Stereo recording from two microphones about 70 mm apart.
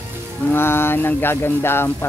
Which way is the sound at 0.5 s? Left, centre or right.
Left.